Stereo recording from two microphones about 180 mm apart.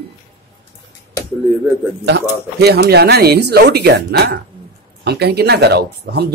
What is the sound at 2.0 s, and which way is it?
Speech, 65° right (ahead or behind).